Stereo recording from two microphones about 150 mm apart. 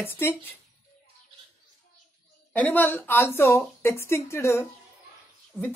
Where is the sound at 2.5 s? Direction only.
10° left (ahead or behind).